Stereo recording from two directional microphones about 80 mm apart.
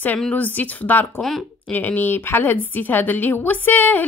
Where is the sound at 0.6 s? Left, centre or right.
Centre.